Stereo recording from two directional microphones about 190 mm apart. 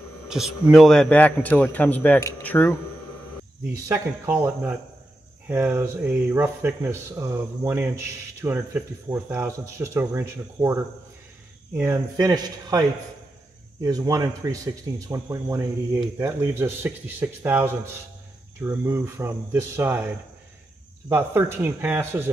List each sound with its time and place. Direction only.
0.3 s a man's voice: centre (ahead or behind)
3.7 s speech: 10° right (ahead or behind)
21.1 s speech: 10° right (ahead or behind)